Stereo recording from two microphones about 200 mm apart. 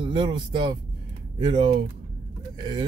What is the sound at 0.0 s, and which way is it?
Speech, 25° right (ahead or behind).